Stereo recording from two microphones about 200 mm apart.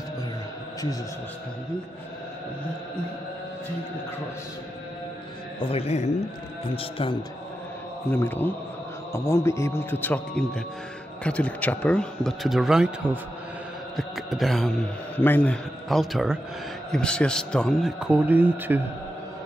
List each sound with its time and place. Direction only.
5.6 s a man's voice: 30° left (ahead or behind)
8.1 s a man's voice: 10° left (ahead or behind); by 18.8 s 10° right (ahead or behind)